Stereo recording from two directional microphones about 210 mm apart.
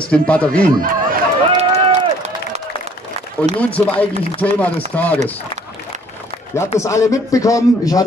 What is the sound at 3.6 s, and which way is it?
A man's voice, 5° left (ahead or behind).